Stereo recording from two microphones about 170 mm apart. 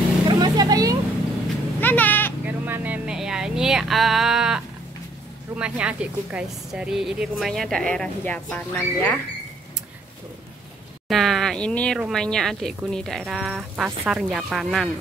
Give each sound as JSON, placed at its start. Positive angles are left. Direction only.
{"t": 0.3, "sound": "vehicle", "side_deg": -25}
{"t": 1.8, "sound": "sheep", "side_deg": 10}
{"t": 2.4, "sound": "a sound", "side_deg": -10}
{"t": 5.6, "sound": "a woman's voice", "side_deg": -5}
{"t": 11.1, "sound": "a woman's voice", "side_deg": 0}